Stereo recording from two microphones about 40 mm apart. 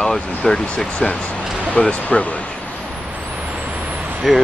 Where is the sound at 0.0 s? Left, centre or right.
Centre.